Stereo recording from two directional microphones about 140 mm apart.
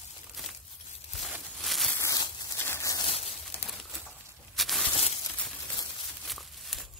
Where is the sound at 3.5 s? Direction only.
15° left (ahead or behind).